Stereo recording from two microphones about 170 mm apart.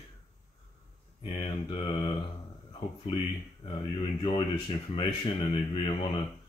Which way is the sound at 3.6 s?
30° left (ahead or behind).